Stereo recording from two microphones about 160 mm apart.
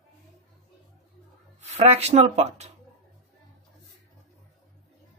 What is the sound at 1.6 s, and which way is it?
Speech, 40° right (ahead or behind).